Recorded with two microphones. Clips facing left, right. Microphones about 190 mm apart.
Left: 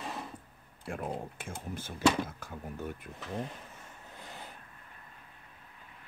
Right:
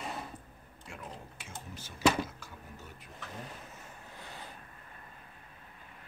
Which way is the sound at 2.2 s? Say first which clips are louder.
Left 6 dB; 55° left (ahead or behind).